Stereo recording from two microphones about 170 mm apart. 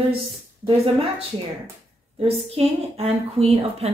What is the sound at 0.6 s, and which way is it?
A woman's voice, 35° right (ahead or behind).